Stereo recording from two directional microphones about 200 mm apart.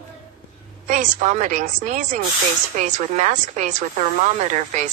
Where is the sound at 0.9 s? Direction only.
40° right (ahead or behind).